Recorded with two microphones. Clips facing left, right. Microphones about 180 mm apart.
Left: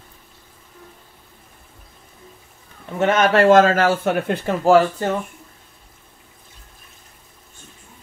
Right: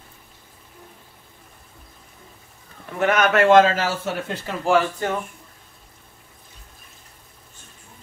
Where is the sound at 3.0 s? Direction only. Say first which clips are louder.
Left 3 dB; 25° left (ahead or behind); by 4.5 s 60° left (ahead or behind).